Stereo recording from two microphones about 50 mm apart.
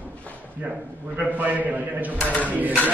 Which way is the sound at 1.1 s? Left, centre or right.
Right.